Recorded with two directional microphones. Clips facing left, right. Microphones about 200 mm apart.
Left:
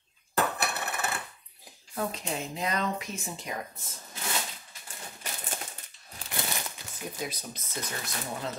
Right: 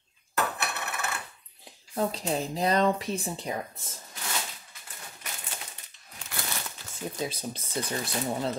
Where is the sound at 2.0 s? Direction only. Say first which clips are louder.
Right 4 dB; 35° right (ahead or behind).